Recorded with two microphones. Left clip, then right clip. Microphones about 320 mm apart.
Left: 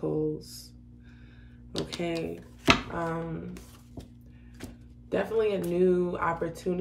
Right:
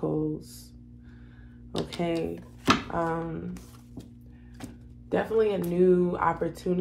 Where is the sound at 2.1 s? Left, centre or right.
Centre.